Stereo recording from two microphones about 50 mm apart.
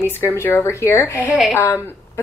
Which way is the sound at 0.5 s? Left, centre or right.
Left.